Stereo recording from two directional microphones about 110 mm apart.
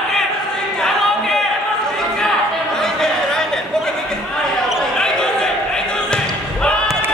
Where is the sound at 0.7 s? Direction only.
5° left (ahead or behind).